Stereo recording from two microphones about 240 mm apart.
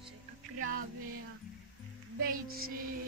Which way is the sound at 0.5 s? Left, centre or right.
Right.